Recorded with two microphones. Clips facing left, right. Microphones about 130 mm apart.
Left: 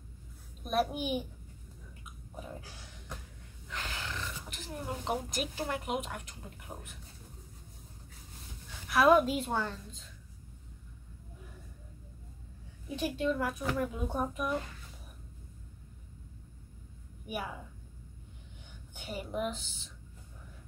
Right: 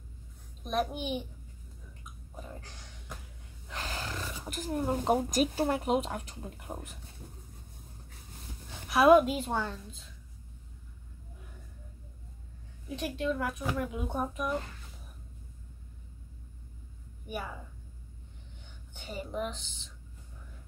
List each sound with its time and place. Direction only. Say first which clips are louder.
0.7 s a woman's voice: left 1 dB; 5° left (ahead or behind)
2.3 s a woman's voice: left 1 dB; 10° left (ahead or behind)
3.6 s speech: right 2 dB; 35° right (ahead or behind)
8.8 s a woman's voice: right 3 dB; 15° right (ahead or behind)
9.2 s a woman's voice: right 1 dB; centre (ahead or behind)
12.8 s a woman's voice: left 1 dB; centre (ahead or behind)
17.3 s a woman's voice: even; 10° left (ahead or behind)
18.9 s a woman's voice: even; 10° left (ahead or behind)